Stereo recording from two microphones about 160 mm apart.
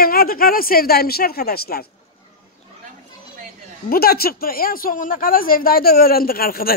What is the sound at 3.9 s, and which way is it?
Speech, 70° left (ahead or behind).